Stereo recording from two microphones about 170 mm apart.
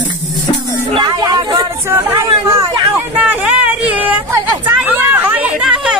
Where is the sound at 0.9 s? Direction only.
25° right (ahead or behind).